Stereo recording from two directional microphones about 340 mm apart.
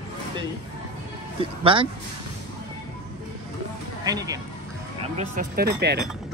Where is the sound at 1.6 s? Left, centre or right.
Centre.